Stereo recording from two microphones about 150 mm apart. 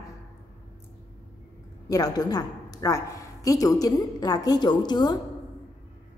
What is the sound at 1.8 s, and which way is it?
A woman's voice, 25° left (ahead or behind).